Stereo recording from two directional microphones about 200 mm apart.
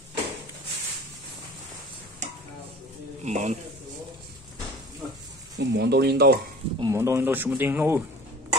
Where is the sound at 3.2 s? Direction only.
35° right (ahead or behind).